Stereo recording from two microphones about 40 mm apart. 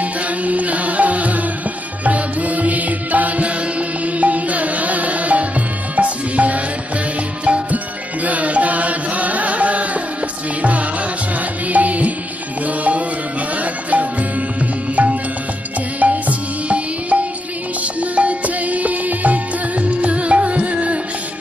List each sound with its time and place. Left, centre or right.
0.0 s music: right
7.7 s music: right